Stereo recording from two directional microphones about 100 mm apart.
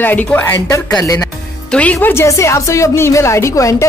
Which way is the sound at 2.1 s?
30° left (ahead or behind).